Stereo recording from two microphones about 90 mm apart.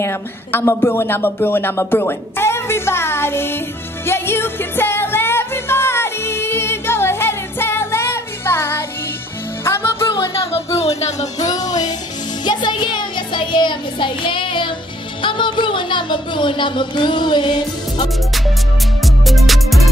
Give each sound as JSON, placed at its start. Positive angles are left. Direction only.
{"t": 0.0, "sound": "music", "side_deg": 25}
{"t": 10.1, "sound": "music", "side_deg": 90}
{"t": 11.1, "sound": "music", "side_deg": 40}
{"t": 12.4, "sound": "speech", "side_deg": 55}
{"t": 19.0, "sound": "music", "side_deg": 0}